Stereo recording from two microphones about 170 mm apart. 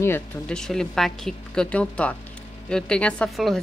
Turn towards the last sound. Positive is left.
turn(degrees=0)  # may be behind; listen again after turning